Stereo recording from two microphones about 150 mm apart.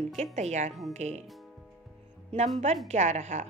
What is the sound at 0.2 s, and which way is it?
A woman's voice, 50° right (ahead or behind).